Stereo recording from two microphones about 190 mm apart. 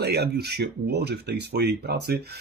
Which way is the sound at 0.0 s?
60° right (ahead or behind).